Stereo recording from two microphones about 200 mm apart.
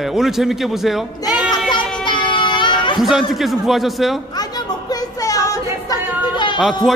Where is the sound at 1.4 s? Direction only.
20° left (ahead or behind).